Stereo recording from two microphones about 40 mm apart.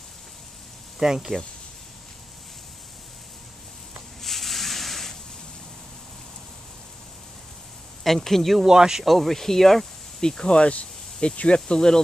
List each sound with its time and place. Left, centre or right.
0.9 s speech: centre
4.2 s a sound: centre
8.0 s speech: centre
8.6 s speech: centre
9.0 s speech: centre
10.2 s speech: centre
11.6 s speech: centre